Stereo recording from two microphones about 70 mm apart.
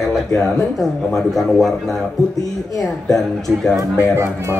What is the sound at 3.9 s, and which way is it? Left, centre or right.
Speech, right.